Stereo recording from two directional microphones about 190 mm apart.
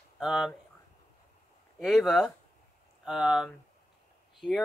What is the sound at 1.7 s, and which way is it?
Speech, centre (ahead or behind).